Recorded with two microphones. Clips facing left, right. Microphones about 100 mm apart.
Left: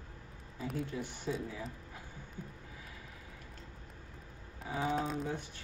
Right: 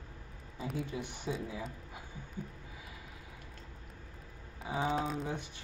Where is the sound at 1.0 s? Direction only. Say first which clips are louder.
Even; 15° right (ahead or behind).